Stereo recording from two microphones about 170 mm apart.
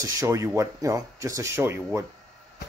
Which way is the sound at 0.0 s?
20° right (ahead or behind).